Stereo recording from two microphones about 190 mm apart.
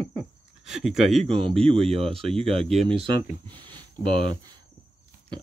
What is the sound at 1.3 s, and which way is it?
Speech, 30° right (ahead or behind).